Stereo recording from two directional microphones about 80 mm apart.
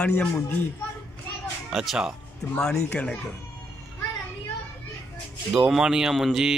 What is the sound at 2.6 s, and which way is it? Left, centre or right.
Speech, centre.